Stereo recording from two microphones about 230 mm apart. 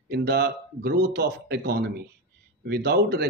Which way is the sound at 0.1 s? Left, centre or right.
Right.